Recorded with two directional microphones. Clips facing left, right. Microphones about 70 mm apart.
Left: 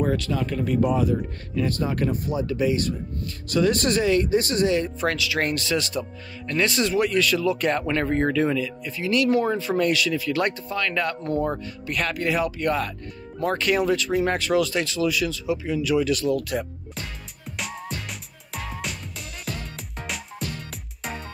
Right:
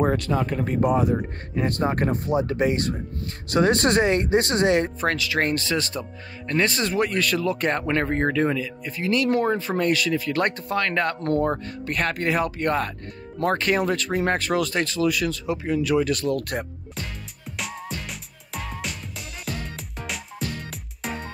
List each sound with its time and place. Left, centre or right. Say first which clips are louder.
0.0 s speech: right 2 dB; right
5.0 s speech: right 1 dB; right
17.5 s music: even; centre